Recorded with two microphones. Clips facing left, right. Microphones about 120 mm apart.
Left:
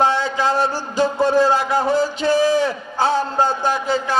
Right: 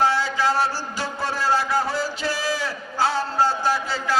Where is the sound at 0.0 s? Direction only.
20° left (ahead or behind).